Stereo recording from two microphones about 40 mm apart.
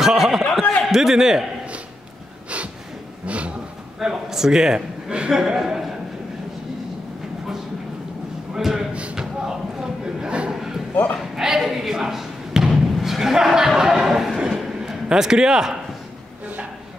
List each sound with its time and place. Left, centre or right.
0.0 s a sound: centre
0.8 s a man's voice: centre
3.3 s vehicle: right
4.0 s a man's voice: centre
5.3 s a man's voice: centre
8.5 s a sound: centre
10.5 s a sound: centre
11.1 s basketball bounce: centre
15.0 s speech: centre